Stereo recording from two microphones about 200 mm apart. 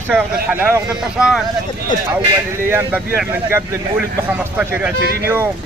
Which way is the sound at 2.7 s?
10° right (ahead or behind).